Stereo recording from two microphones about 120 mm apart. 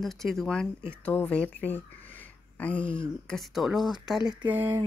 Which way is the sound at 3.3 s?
Centre (ahead or behind).